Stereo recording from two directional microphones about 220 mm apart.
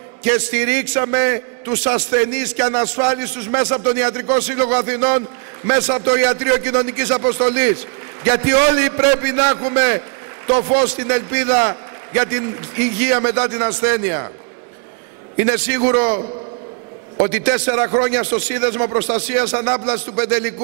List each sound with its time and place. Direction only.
0.2 s a man's voice: 15° right (ahead or behind)
15.3 s a man's voice: 15° right (ahead or behind)
17.4 s a man's voice: 15° right (ahead or behind)